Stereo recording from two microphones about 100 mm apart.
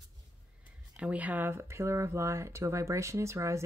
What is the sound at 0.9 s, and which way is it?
Speech, 10° right (ahead or behind).